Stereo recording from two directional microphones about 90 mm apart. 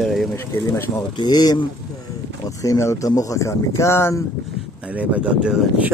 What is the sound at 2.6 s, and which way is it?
Speech, 35° left (ahead or behind).